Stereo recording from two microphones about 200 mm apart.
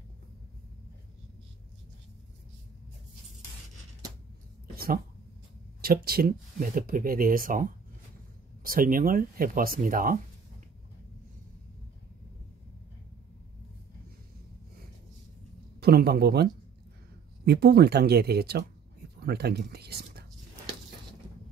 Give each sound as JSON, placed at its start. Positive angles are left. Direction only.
{"t": 4.7, "sound": "a sound", "side_deg": -45}
{"t": 5.8, "sound": "speech", "side_deg": -50}
{"t": 8.6, "sound": "speech", "side_deg": -45}
{"t": 15.8, "sound": "speech", "side_deg": -50}
{"t": 17.5, "sound": "speech", "side_deg": -55}